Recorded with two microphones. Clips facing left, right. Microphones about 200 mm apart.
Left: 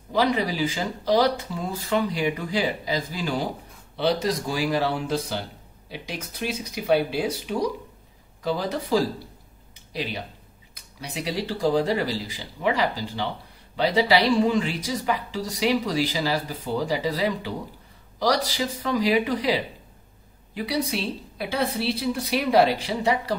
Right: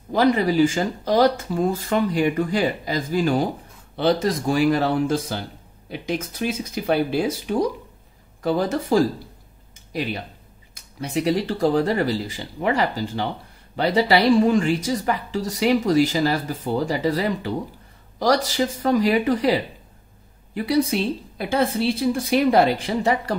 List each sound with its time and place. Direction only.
0.1 s speech: 50° right (ahead or behind)
8.4 s speech: 50° right (ahead or behind)
10.7 s speech: 50° right (ahead or behind)